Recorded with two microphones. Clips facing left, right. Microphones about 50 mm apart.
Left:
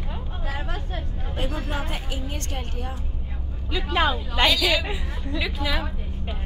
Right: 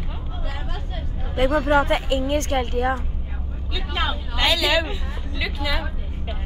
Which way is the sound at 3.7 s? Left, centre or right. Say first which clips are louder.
Left 4 dB; centre.